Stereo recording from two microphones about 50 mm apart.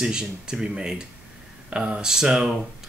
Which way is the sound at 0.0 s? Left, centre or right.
Centre.